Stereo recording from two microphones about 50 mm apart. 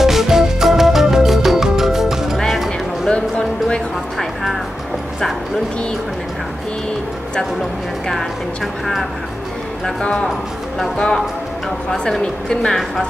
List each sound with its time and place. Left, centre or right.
0.0 s music: centre
3.1 s music: centre
10.0 s a woman's voice: centre